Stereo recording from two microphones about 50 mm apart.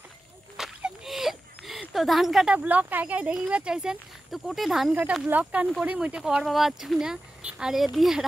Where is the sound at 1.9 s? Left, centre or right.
Centre.